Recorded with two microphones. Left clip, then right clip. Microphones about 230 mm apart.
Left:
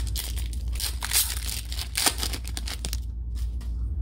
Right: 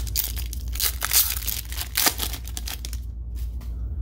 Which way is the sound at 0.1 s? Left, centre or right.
Centre.